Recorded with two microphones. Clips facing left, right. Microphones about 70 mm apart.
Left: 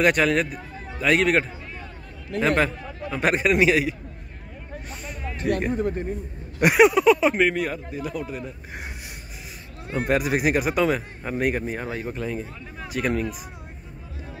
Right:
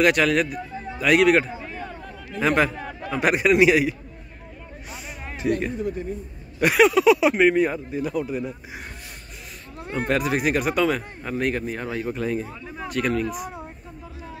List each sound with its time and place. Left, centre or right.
0.0 s a man's voice: centre
5.0 s music: centre
5.8 s a man's voice: left
6.6 s speech: centre
7.5 s a man's voice: right
9.9 s speech: centre
12.1 s speech: centre